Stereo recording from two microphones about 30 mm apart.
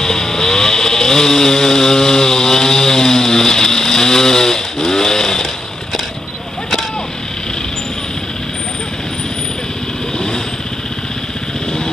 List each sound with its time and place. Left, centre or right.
0.0 s vehicle: centre